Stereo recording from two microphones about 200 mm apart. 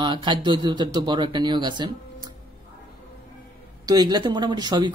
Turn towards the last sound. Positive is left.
turn(degrees=-20)  # may be behind; listen again after turning